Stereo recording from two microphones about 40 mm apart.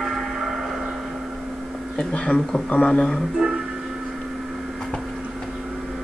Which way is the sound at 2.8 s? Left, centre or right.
Left.